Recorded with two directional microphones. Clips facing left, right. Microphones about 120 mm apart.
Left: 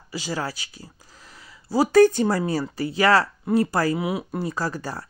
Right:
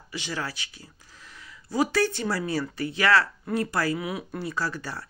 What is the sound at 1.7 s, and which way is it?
Speech, 40° left (ahead or behind).